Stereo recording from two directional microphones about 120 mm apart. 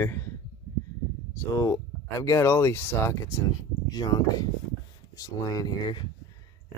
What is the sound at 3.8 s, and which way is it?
Speech, 35° left (ahead or behind).